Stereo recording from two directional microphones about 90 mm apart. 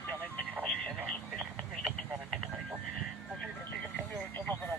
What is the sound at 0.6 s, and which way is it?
Music, 5° left (ahead or behind).